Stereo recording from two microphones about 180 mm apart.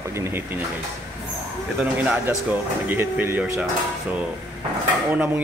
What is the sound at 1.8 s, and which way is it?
Speech, 5° right (ahead or behind).